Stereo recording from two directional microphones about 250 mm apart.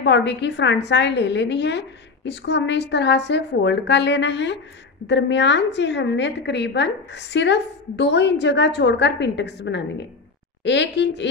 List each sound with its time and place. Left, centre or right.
0.0 s a woman's voice: left